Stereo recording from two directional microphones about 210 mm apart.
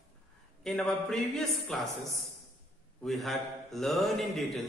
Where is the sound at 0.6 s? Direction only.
5° left (ahead or behind).